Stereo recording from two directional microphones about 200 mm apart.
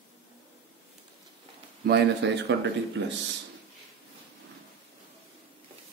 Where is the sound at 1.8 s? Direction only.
60° right (ahead or behind).